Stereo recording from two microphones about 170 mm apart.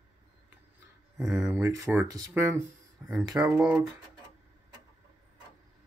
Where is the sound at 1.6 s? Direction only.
15° right (ahead or behind).